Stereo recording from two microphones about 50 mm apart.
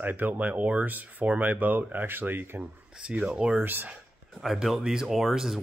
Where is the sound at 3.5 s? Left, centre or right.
Right.